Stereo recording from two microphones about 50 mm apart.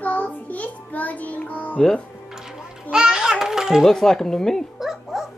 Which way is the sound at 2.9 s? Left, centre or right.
Centre.